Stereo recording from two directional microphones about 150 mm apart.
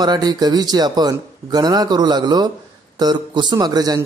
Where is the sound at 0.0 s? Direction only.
25° right (ahead or behind).